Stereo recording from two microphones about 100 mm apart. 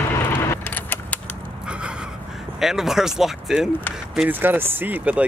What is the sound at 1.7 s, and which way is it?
Gasp, 10° right (ahead or behind).